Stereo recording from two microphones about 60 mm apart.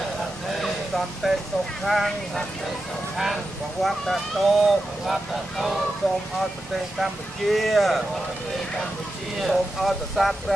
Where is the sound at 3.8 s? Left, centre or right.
Centre.